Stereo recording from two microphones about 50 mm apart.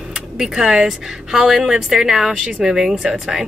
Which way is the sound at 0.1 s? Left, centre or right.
Centre.